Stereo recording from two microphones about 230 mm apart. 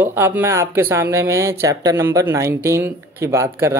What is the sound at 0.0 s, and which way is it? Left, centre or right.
Speech, centre.